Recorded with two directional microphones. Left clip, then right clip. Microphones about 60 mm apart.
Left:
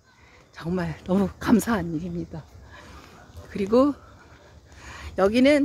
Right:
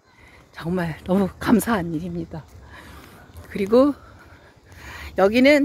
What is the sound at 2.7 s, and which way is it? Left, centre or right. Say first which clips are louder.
Dog: right 3 dB; right.